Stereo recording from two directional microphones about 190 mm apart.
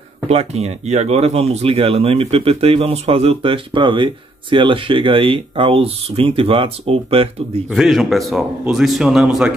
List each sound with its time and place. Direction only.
0.3 s speech: 35° right (ahead or behind)
7.7 s speech: centre (ahead or behind)